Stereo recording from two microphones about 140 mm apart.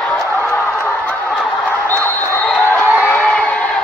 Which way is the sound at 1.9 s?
15° left (ahead or behind).